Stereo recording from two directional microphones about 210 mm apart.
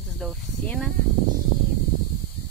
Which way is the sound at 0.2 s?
Centre (ahead or behind).